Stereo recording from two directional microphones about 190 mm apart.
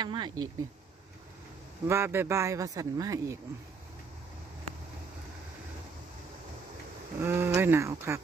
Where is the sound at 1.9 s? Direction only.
15° right (ahead or behind).